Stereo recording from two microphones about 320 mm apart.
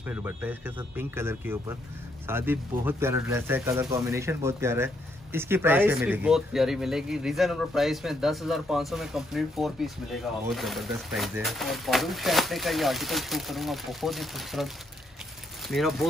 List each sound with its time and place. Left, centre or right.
0.0 s speech: centre
15.7 s speech: centre